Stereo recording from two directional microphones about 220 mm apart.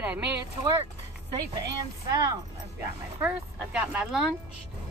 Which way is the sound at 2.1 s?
15° right (ahead or behind).